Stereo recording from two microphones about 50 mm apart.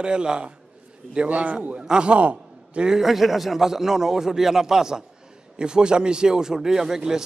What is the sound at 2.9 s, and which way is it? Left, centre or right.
A man's voice, centre.